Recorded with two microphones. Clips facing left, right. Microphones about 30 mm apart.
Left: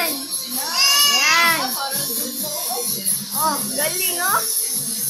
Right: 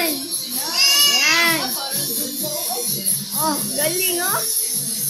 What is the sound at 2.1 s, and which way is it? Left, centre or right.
Music, right.